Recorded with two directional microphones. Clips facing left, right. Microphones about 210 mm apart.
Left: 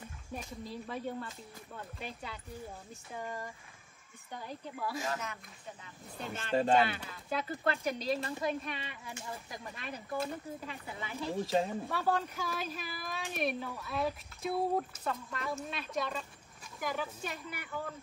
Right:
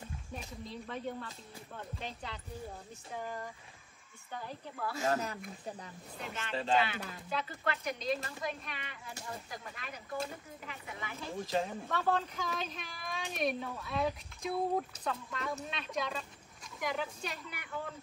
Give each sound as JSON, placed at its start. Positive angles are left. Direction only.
{"t": 0.3, "sound": "speech", "side_deg": 5}
{"t": 4.3, "sound": "speech", "side_deg": 15}
{"t": 5.0, "sound": "speech", "side_deg": -35}
{"t": 6.5, "sound": "speech", "side_deg": 50}
{"t": 11.9, "sound": "speech", "side_deg": 10}